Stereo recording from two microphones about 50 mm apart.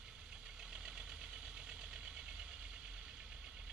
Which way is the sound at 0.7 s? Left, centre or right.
Centre.